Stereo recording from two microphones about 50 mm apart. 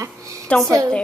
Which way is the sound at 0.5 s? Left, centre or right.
Left.